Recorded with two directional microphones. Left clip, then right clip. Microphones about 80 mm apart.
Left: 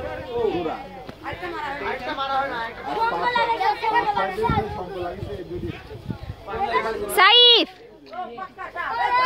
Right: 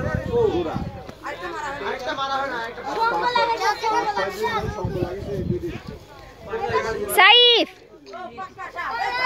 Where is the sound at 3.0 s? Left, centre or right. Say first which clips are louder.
Right 1 dB; centre.